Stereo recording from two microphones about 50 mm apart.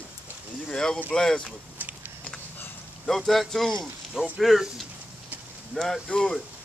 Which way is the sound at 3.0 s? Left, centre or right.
Centre.